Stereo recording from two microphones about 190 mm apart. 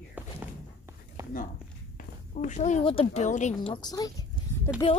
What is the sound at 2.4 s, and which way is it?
A woman's voice, 40° left (ahead or behind).